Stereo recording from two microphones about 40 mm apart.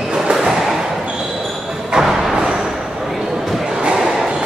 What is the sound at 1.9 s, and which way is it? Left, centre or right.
Music, centre.